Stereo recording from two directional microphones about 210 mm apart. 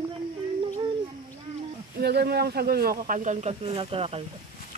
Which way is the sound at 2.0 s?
50° right (ahead or behind).